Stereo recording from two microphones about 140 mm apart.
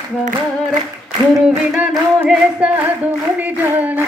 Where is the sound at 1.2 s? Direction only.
30° right (ahead or behind).